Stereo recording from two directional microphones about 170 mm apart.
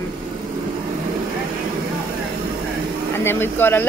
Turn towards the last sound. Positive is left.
turn(degrees=15)  # may be behind; listen again after turning